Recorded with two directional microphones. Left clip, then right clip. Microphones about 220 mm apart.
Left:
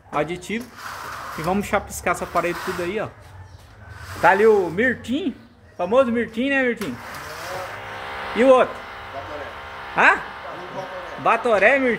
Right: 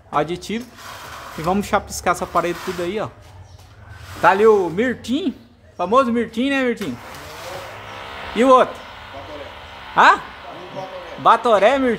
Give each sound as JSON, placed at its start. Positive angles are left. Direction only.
{"t": 0.1, "sound": "a man's voice", "side_deg": -25}
{"t": 4.2, "sound": "speech", "side_deg": -15}
{"t": 8.4, "sound": "speech", "side_deg": -25}
{"t": 11.2, "sound": "a man's voice", "side_deg": -15}